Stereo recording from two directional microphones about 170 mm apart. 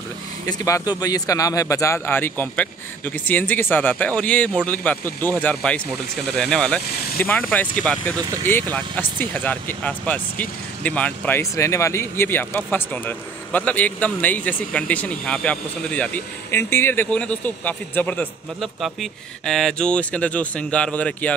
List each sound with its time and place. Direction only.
0.5 s speech: 20° left (ahead or behind)